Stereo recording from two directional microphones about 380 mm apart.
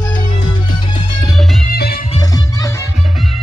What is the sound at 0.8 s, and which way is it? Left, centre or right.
Music, centre.